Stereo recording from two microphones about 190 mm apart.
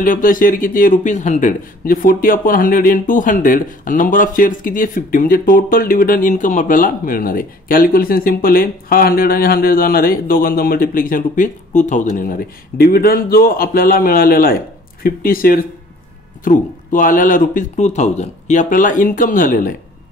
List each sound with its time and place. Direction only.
0.0 s speech: 45° left (ahead or behind)